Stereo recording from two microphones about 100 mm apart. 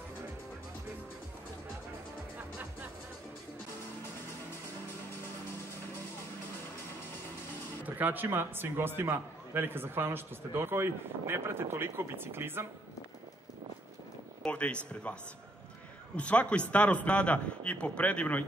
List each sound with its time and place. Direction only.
7.8 s a man's voice: 20° right (ahead or behind)
14.4 s speech: 10° left (ahead or behind)
16.2 s a man's voice: 10° left (ahead or behind)